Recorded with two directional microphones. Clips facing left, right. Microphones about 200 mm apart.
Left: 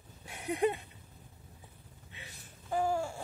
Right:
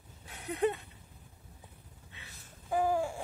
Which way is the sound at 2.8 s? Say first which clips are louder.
Right 2 dB; 15° right (ahead or behind).